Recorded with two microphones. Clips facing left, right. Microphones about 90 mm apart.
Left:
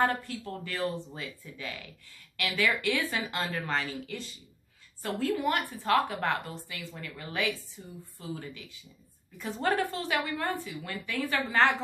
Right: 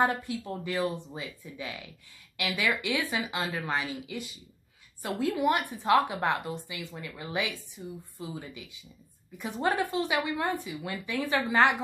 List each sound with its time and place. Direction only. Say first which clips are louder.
0.0 s a woman's voice: right 1 dB; 15° right (ahead or behind)